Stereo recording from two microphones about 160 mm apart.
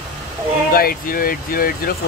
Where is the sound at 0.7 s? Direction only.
65° left (ahead or behind).